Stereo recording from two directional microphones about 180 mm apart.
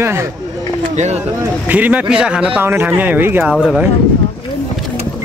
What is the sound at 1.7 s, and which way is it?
Speech, 10° right (ahead or behind).